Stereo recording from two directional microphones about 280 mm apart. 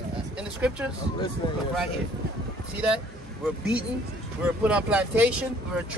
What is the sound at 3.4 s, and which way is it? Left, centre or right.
Speech, centre.